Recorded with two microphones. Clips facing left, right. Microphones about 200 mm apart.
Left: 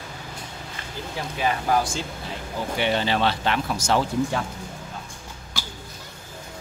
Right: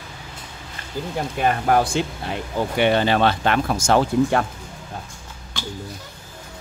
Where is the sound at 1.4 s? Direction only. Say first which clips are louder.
Right 4 dB; 55° right (ahead or behind).